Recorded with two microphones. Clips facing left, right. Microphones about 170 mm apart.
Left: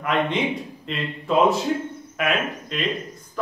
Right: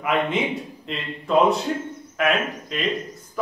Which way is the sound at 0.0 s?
5° right (ahead or behind).